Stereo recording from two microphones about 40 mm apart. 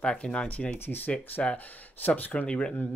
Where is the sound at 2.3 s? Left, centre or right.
Left.